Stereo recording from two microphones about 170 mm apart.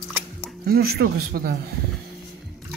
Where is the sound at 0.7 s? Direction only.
65° right (ahead or behind).